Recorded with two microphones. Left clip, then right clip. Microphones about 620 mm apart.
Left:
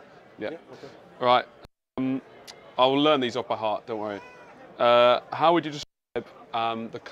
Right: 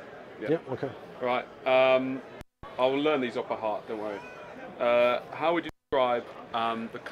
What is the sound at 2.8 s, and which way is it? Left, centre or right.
Speech, left.